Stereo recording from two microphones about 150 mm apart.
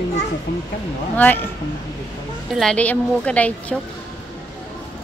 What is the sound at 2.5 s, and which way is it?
A woman's voice, 5° left (ahead or behind).